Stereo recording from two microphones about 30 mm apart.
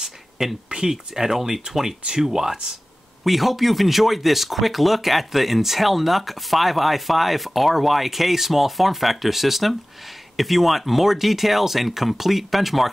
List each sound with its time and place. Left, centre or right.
0.0 s a sound: centre
0.8 s speech: centre
3.3 s speech: centre